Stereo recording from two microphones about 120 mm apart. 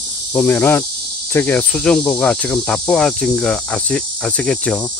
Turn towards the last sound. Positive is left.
turn(degrees=5)  # may be behind; listen again after turning